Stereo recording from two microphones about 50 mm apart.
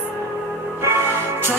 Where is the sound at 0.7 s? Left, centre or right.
Right.